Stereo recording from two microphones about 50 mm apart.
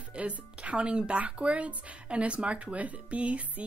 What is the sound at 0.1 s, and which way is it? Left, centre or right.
Speech, right.